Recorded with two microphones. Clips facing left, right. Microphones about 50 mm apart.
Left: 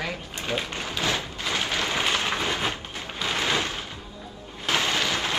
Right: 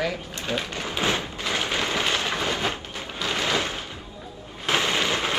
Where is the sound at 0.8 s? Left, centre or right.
Right.